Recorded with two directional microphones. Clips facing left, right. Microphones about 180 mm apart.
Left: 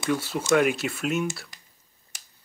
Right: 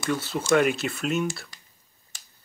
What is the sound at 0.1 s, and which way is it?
Speech, 10° left (ahead or behind).